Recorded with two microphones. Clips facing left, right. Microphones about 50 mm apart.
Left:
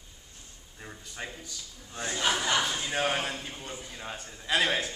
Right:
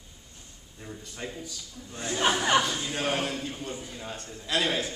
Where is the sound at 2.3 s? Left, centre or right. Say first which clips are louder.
Right 5 dB; right.